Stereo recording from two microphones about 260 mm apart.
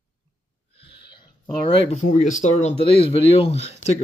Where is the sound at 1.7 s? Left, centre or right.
Left.